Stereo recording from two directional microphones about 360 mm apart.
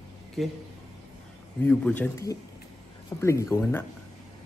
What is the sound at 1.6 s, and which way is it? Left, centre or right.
A man's voice, centre.